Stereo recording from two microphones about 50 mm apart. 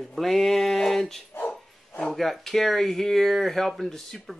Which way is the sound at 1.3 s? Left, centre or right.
Left.